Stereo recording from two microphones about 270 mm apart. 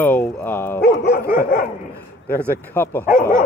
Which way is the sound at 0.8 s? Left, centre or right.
Left.